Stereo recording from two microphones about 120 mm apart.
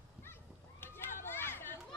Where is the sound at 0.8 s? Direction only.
20° left (ahead or behind).